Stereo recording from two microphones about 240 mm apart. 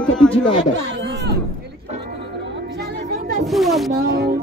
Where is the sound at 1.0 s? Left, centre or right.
Right.